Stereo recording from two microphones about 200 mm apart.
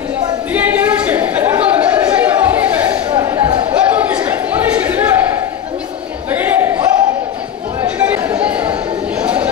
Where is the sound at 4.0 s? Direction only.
5° right (ahead or behind).